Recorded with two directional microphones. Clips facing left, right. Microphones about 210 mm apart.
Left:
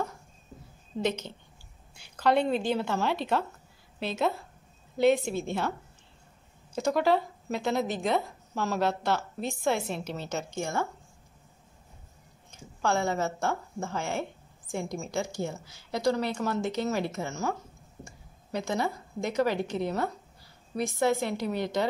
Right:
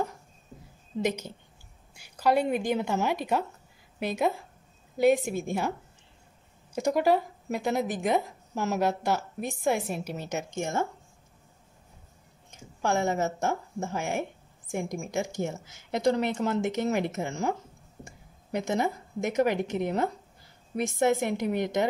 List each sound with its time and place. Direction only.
1.0 s speech: 10° right (ahead or behind)
12.8 s a woman's voice: 20° right (ahead or behind)